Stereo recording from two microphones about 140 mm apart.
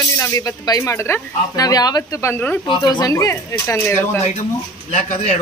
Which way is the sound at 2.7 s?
35° left (ahead or behind).